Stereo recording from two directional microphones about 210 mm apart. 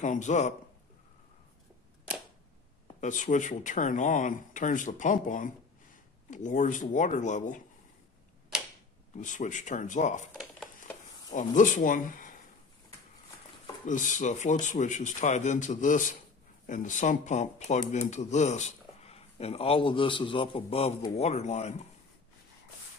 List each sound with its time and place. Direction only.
0.0 s speech: 35° left (ahead or behind)
3.0 s speech: 35° left (ahead or behind)
9.1 s speech: 35° left (ahead or behind)
11.3 s speech: 35° left (ahead or behind)
13.8 s speech: 35° left (ahead or behind)